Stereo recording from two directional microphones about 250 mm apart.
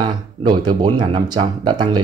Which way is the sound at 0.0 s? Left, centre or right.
Centre.